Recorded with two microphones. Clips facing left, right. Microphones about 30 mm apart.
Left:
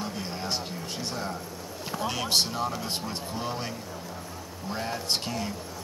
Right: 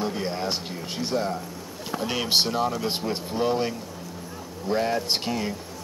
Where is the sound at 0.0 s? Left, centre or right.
Right.